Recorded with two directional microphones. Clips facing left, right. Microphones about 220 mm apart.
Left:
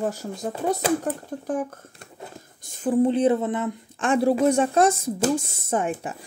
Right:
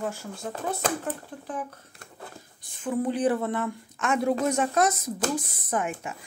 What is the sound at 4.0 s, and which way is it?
Speech, 30° left (ahead or behind).